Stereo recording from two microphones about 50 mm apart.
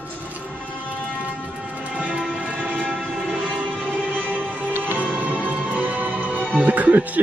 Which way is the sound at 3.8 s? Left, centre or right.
Right.